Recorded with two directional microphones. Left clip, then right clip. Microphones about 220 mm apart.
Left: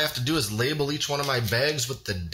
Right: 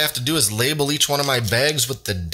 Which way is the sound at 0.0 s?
30° right (ahead or behind).